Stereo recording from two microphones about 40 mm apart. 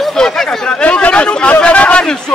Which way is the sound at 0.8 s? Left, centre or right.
Left.